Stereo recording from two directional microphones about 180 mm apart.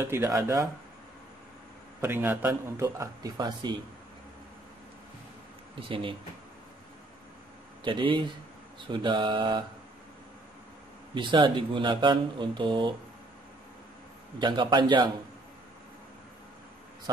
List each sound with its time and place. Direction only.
0.0 s a man's voice: 15° right (ahead or behind)
2.0 s a man's voice: 10° right (ahead or behind)
5.8 s speech: 30° right (ahead or behind)
7.8 s speech: 25° right (ahead or behind)
11.1 s speech: 25° right (ahead or behind)
14.4 s speech: 25° right (ahead or behind)